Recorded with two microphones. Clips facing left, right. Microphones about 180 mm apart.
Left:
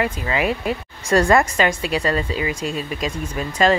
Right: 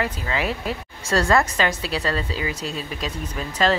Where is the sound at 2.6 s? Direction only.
45° left (ahead or behind).